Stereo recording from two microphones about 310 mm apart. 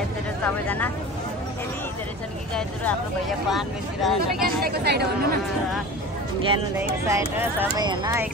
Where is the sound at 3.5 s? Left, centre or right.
Centre.